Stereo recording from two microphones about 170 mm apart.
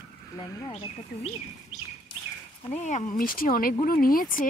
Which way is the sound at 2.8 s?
45° left (ahead or behind).